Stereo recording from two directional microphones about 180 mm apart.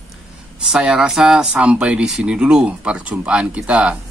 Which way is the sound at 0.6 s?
5° right (ahead or behind).